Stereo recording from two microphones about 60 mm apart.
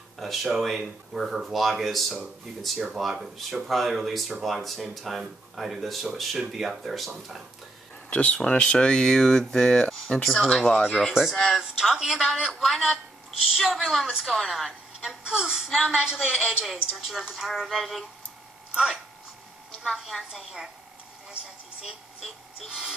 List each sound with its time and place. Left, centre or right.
0.2 s speech: centre
8.1 s speech: left; by 11.6 s centre
11.6 s a woman's voice: centre
15.0 s a woman's voice: centre
20.0 s a woman's voice: centre
21.3 s a sound: centre
22.2 s a woman's voice: centre